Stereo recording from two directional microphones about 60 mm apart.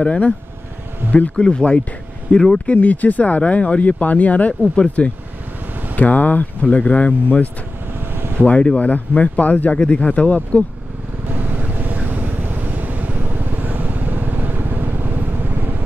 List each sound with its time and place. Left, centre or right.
0.0 s speech: left
2.7 s speech: left
11.2 s vehicle: right